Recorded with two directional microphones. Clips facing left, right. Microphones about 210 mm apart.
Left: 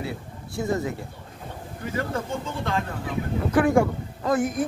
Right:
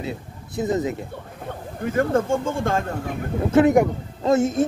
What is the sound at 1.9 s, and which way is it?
Speech, 50° right (ahead or behind).